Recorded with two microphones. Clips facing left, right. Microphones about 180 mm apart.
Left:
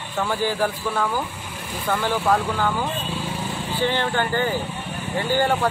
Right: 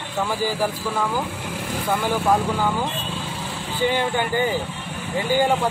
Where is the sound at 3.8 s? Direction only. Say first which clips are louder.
Right 1 dB; 10° right (ahead or behind).